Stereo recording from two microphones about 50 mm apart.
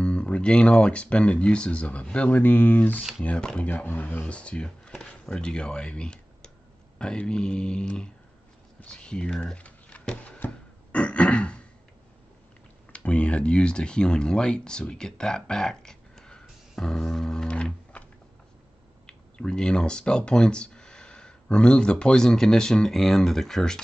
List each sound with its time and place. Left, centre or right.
0.0 s speech: left
2.4 s speech: left
4.4 s speech: left
10.9 s throat clearing: left
12.9 s speech: left
19.0 s speech: centre